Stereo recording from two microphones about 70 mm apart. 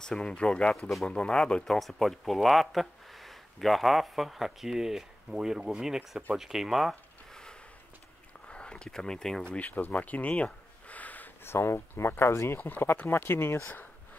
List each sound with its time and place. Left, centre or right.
0.0 s speech: centre
8.5 s a sound: centre
9.5 s speech: left
11.4 s speech: left
12.5 s speech: left